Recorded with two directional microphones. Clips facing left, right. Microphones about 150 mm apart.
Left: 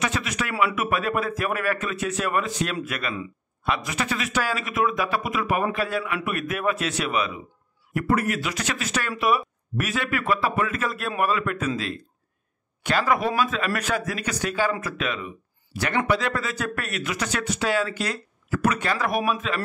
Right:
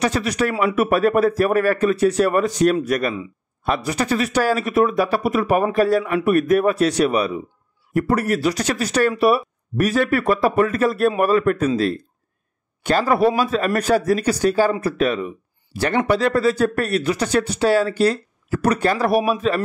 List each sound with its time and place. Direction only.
0.0 s a man's voice: 35° right (ahead or behind)